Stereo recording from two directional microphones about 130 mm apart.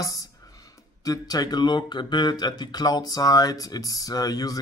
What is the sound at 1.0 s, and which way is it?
Speech, 30° left (ahead or behind).